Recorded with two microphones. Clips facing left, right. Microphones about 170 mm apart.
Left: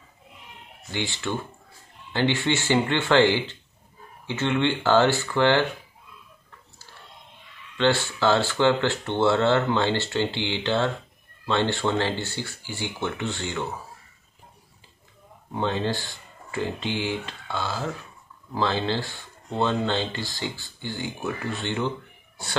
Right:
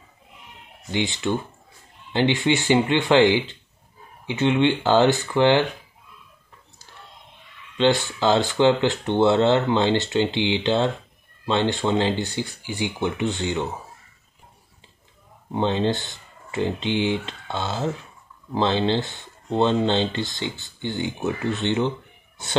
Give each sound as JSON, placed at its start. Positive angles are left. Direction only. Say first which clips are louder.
{"t": 0.9, "sound": "speech", "louder": "right 5 dB", "side_deg": -20}
{"t": 7.7, "sound": "speech", "louder": "right 3 dB", "side_deg": -15}
{"t": 15.5, "sound": "speech", "louder": "right 4 dB", "side_deg": -20}